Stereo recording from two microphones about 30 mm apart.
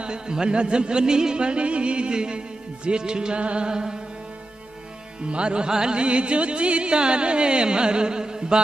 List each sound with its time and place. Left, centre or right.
0.0 s music: right
1.4 s music: right
3.3 s music: right
3.6 s music: right
5.3 s music: right